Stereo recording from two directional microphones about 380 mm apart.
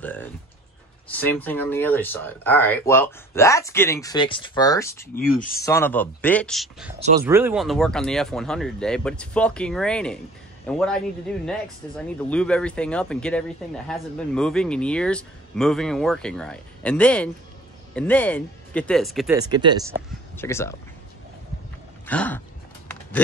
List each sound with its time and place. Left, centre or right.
0.0 s speech: centre
5.0 s speech: left
5.6 s speech: centre
7.0 s speech: centre
7.2 s speech: centre
20.3 s speech: centre
22.0 s a sound: centre